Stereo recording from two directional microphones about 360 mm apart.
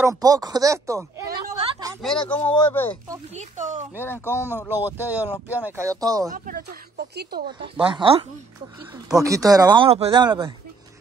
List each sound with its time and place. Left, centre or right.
0.0 s speech: centre
3.1 s speech: centre
4.0 s speech: centre
4.6 s speech: centre
6.3 s speech: right
7.7 s speech: centre